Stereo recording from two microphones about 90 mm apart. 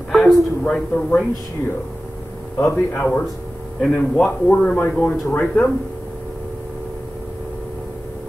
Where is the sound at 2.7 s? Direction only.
20° left (ahead or behind).